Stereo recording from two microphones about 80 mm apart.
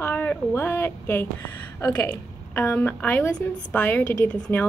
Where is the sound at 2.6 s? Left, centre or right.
Left.